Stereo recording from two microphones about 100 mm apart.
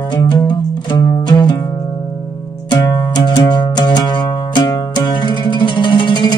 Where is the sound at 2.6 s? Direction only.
40° left (ahead or behind).